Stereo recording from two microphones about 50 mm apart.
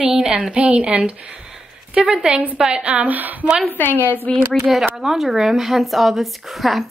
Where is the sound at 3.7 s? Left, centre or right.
Left.